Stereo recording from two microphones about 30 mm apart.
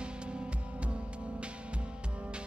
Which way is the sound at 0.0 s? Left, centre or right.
Right.